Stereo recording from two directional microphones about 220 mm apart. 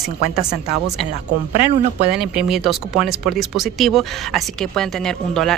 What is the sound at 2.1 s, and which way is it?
Speech, centre (ahead or behind).